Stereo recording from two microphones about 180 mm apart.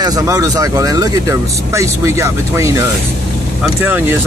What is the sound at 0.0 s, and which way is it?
Speech, 20° right (ahead or behind).